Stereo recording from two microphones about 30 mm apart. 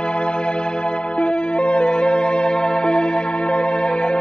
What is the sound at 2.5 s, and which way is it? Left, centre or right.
Music, left.